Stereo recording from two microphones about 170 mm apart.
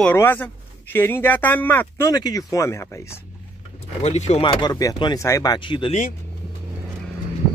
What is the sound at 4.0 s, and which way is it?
Speech, 40° left (ahead or behind).